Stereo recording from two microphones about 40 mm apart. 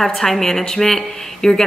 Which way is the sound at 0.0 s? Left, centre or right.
Centre.